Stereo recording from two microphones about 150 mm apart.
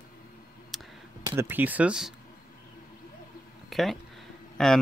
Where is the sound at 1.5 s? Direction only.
10° right (ahead or behind).